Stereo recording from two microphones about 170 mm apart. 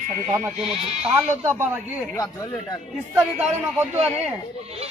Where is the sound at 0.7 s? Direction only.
35° right (ahead or behind).